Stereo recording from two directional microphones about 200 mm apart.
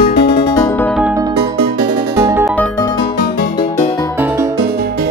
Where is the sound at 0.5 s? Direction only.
15° left (ahead or behind).